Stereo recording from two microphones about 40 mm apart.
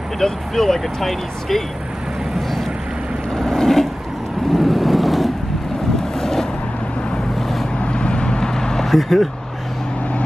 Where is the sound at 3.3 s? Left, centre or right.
Centre.